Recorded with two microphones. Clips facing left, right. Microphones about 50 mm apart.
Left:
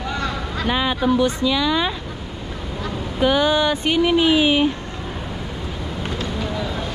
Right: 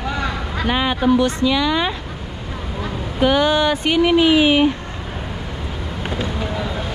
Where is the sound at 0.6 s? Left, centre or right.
Right.